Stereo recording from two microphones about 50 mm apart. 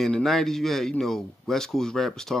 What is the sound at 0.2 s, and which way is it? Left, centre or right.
Speech, centre.